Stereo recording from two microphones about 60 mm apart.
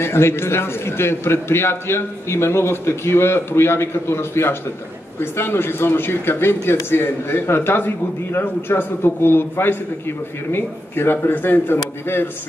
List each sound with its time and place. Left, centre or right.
0.0 s a man's voice: left